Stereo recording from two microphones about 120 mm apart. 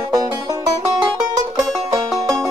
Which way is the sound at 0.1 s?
30° right (ahead or behind).